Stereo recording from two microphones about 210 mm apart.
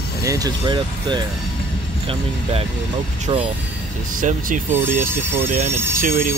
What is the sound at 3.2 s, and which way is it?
Speech, 25° right (ahead or behind).